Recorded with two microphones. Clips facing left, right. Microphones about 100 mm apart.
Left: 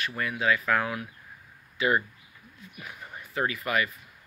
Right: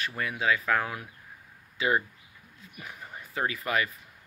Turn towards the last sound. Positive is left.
turn(degrees=-30)  # may be behind; listen again after turning